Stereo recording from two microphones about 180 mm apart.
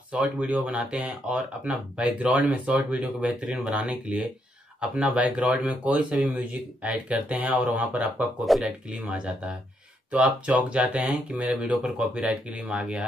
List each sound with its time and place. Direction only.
0.1 s speech: 5° right (ahead or behind)